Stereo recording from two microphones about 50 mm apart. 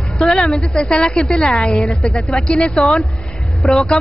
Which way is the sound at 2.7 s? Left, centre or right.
Centre.